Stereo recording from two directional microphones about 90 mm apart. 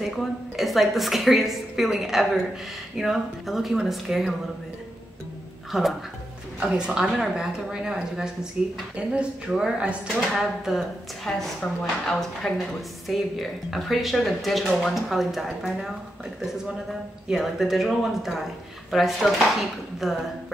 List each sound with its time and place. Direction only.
0.0 s speech: centre (ahead or behind)
5.7 s speech: centre (ahead or behind)
17.3 s speech: 5° right (ahead or behind)